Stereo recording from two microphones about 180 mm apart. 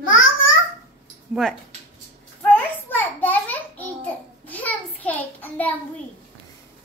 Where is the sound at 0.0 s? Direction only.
90° left.